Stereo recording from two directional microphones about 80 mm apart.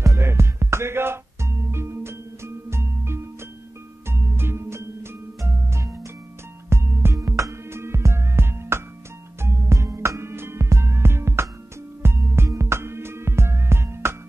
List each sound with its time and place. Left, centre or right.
0.0 s music: right
7.2 s music: right